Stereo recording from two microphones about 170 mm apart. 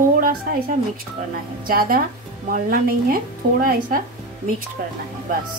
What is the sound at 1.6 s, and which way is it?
Speech, 60° right (ahead or behind).